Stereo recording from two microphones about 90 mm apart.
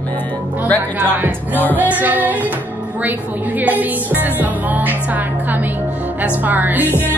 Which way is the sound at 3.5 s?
20° right (ahead or behind).